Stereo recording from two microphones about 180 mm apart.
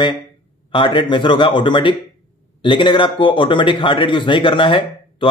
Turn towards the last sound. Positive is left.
turn(degrees=25)  # may be behind; listen again after turning